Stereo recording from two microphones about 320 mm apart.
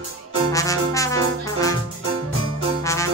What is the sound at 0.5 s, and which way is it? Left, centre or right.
Music, centre.